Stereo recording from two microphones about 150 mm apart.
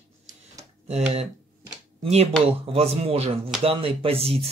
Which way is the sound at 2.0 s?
45° right (ahead or behind).